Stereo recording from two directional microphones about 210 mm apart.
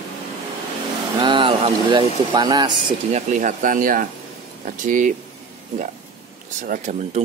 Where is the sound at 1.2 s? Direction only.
25° right (ahead or behind).